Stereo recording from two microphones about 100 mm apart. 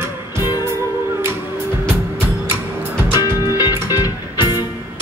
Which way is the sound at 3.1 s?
40° left (ahead or behind).